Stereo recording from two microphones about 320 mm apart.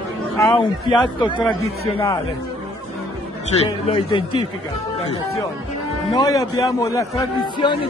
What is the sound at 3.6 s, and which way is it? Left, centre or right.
Speech, centre.